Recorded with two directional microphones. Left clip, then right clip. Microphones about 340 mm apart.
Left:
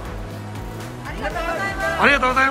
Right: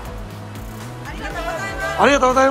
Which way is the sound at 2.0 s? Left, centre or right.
Centre.